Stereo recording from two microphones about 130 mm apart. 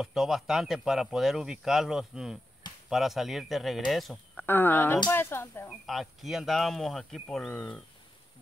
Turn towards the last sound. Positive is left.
turn(degrees=10)  # may be behind; listen again after turning